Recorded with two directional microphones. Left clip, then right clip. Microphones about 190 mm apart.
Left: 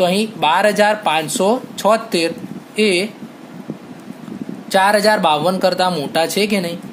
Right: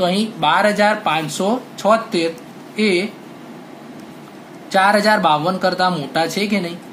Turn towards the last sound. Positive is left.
turn(degrees=50)  # may be behind; listen again after turning